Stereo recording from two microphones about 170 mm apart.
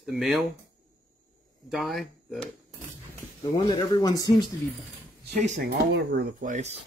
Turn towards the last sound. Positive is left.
turn(degrees=-45)  # may be behind; listen again after turning